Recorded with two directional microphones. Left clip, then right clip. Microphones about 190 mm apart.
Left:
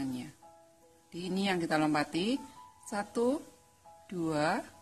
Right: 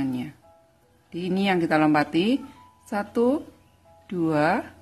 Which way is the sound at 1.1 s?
5° left (ahead or behind).